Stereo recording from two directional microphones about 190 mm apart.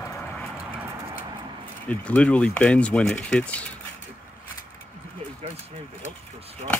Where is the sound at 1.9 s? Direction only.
5° left (ahead or behind).